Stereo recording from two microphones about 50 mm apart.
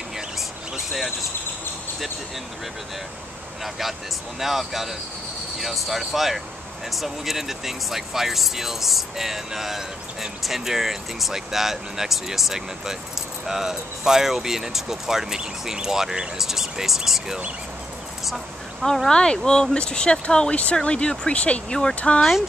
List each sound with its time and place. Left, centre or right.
3.6 s speech: centre
18.2 s dog: centre
18.9 s speech: centre